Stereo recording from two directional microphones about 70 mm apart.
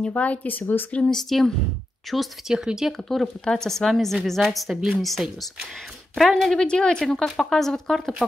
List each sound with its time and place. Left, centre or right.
0.0 s speech: centre
1.1 s a woman's voice: centre
3.0 s a woman's voice: centre